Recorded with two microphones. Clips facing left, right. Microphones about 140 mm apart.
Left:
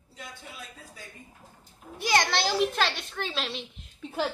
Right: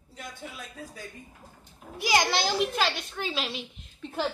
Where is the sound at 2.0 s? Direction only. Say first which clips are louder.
Even; 5° right (ahead or behind).